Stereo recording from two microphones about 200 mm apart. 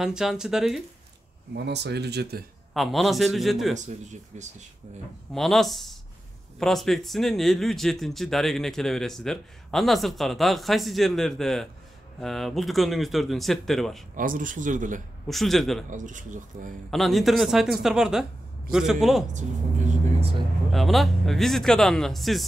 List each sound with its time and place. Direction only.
0.0 s speech: centre (ahead or behind)
1.5 s speech: 55° right (ahead or behind)
2.7 s speech: centre (ahead or behind)
3.7 s speech: 35° right (ahead or behind)
5.3 s speech: centre (ahead or behind)
14.1 s speech: 45° right (ahead or behind)
15.2 s speech: centre (ahead or behind)
15.9 s speech: 40° right (ahead or behind)
16.9 s speech: centre (ahead or behind)
19.3 s vehicle: 40° right (ahead or behind)
20.7 s speech: centre (ahead or behind)